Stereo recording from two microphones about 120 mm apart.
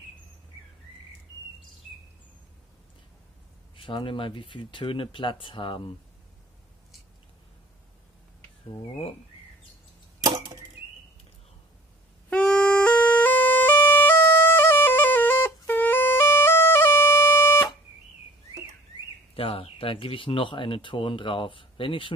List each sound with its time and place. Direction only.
3.7 s speech: 45° left (ahead or behind)
10.2 s arrow: 35° right (ahead or behind)
12.3 s music: 10° left (ahead or behind)
19.3 s speech: 50° left (ahead or behind)